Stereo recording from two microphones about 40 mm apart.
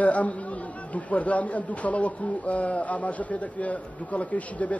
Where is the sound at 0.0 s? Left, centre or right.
Left.